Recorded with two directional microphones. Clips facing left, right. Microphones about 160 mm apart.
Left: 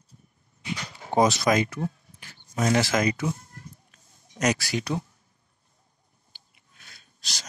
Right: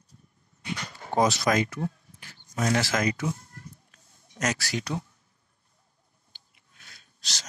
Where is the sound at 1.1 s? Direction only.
20° left (ahead or behind).